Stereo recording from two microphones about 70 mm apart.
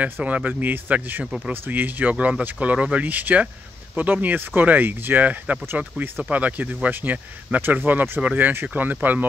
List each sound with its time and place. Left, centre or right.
0.0 s speech: centre
1.2 s speech: centre
1.5 s speech: right